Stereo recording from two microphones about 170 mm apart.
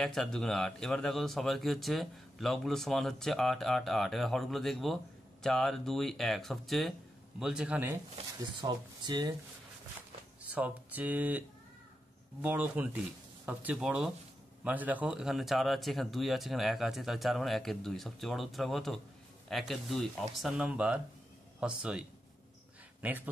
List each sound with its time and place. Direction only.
0.0 s speech: centre (ahead or behind)
8.5 s speech: 25° right (ahead or behind)
10.5 s a man's voice: 10° right (ahead or behind)
23.0 s speech: 10° right (ahead or behind)